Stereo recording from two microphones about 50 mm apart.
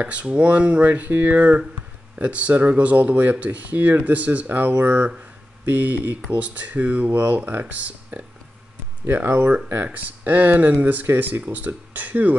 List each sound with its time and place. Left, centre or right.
0.0 s speech: right
7.1 s speech: right
9.0 s speech: right